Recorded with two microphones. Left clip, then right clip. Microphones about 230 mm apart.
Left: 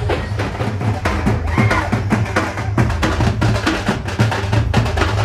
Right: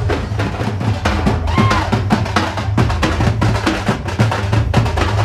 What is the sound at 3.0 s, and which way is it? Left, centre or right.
Music, centre.